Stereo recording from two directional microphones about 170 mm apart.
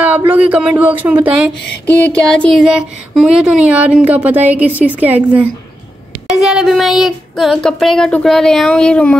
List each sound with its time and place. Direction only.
0.0 s speech: 10° right (ahead or behind)
1.9 s speech: 5° left (ahead or behind); by 5.5 s 10° right (ahead or behind)
6.2 s a sound: centre (ahead or behind)